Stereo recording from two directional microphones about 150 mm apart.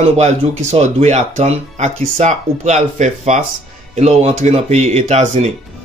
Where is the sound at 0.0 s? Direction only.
45° right (ahead or behind).